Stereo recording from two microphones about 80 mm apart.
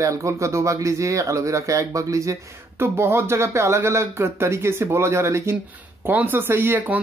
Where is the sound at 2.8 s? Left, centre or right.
Right.